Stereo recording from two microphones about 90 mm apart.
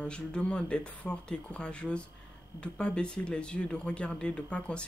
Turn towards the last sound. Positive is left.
turn(degrees=15)  # may be behind; listen again after turning